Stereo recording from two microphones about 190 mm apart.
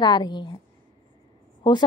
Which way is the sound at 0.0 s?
20° left (ahead or behind).